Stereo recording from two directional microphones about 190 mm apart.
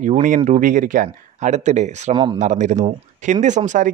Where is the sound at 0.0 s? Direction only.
45° right (ahead or behind).